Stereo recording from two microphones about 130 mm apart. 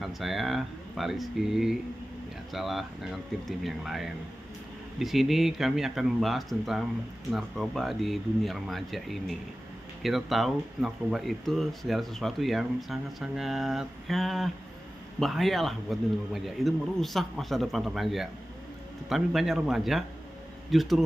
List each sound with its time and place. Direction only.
0.0 s speech: centre (ahead or behind)